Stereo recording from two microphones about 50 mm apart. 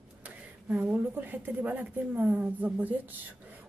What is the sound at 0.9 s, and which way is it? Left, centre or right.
A woman's voice, right.